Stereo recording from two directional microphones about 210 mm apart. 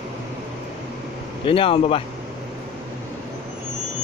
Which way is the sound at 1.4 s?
25° left (ahead or behind).